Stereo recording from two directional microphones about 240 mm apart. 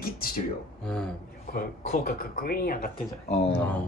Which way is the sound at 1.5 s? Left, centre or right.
Left.